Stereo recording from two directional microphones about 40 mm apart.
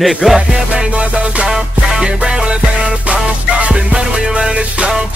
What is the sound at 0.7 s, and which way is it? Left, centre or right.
Music, right.